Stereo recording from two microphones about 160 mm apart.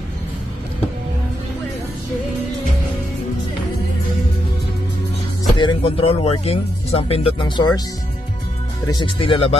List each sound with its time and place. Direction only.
5.6 s speech: 35° left (ahead or behind)
8.8 s speech: 30° left (ahead or behind)